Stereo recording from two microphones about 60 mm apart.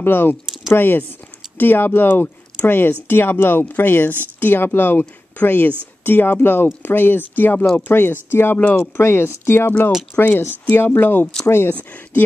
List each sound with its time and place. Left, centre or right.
0.0 s speech: left
8.5 s speech: left
8.9 s speech: left
9.7 s speech: left
11.7 s speech: left